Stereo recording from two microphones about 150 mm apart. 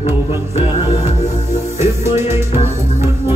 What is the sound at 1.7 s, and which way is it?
Music, 15° right (ahead or behind).